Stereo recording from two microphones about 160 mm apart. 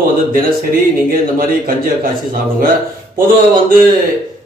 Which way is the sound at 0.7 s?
60° right (ahead or behind).